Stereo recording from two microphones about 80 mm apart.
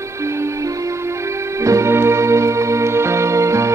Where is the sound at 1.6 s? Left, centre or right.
Right.